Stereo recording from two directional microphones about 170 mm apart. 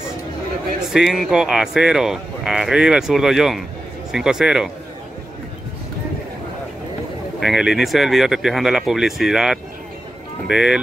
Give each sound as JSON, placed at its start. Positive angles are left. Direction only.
{"t": 0.8, "sound": "speech", "side_deg": 0}
{"t": 7.3, "sound": "speech", "side_deg": 0}